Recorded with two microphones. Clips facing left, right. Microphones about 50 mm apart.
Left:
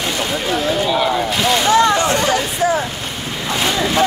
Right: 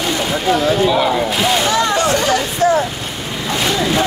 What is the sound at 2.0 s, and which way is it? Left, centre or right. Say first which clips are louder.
Speech: right 1 dB; left.